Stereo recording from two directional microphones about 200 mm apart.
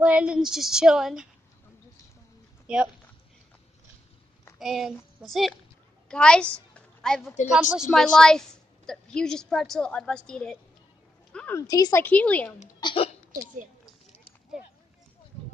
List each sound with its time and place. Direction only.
0.0 s female singing: 5° right (ahead or behind)
2.6 s speech: 5° right (ahead or behind)
4.6 s a woman's voice: centre (ahead or behind)
11.3 s a sound: 10° left (ahead or behind)
11.6 s a woman's voice: 20° left (ahead or behind)
12.8 s speech: 25° left (ahead or behind)